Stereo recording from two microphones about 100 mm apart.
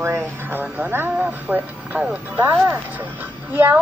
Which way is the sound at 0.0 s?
25° right (ahead or behind).